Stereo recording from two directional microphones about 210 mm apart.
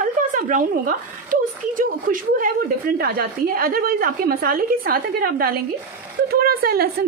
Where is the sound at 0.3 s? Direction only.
40° right (ahead or behind).